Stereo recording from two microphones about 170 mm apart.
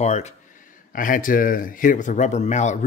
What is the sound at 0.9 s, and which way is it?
Speech, 55° left (ahead or behind).